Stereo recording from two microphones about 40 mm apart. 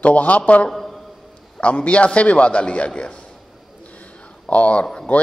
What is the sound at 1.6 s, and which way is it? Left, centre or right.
Speech, left.